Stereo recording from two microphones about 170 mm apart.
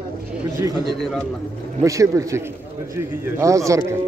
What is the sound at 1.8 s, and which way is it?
A man's voice, 20° right (ahead or behind).